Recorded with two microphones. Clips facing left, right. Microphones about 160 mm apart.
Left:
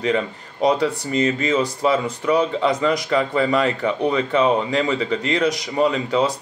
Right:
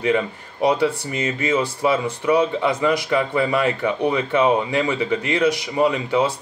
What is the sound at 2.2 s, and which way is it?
Speech, 10° right (ahead or behind).